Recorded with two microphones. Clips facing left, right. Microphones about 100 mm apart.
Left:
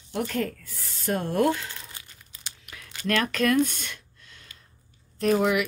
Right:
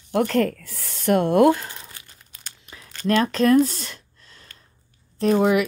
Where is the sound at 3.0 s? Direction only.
30° right (ahead or behind).